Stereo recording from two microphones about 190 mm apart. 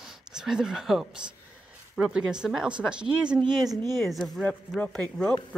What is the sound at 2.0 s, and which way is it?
Speech, 5° right (ahead or behind).